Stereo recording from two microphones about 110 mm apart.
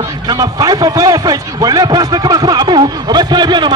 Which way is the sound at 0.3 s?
35° right (ahead or behind).